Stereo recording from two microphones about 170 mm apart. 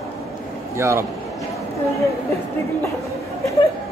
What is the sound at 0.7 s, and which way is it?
Speech, 15° right (ahead or behind).